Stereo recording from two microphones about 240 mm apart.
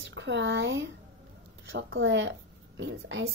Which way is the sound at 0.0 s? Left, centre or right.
Right.